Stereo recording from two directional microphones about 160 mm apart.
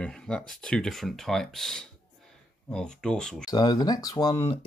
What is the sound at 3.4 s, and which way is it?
Speech, 25° left (ahead or behind).